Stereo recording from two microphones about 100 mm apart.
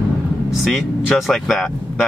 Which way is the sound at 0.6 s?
Centre (ahead or behind).